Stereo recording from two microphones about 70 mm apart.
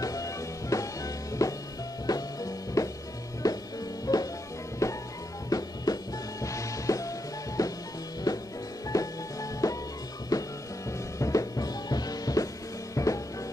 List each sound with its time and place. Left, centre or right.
0.0 s music: left
4.8 s music: left
5.5 s music: left
8.3 s music: left
8.8 s music: left
12.9 s drum kit: left